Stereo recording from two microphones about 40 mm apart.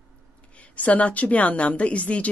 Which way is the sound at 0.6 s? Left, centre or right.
Left.